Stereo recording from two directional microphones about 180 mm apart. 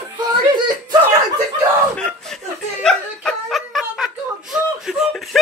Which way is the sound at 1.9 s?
5° left (ahead or behind).